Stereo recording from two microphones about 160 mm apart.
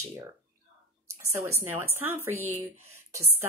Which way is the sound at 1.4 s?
15° right (ahead or behind).